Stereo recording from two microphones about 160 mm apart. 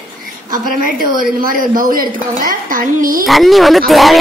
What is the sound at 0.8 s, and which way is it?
A woman's voice, 60° right (ahead or behind).